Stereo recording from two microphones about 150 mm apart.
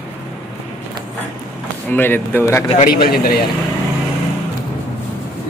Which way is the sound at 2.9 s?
85° left.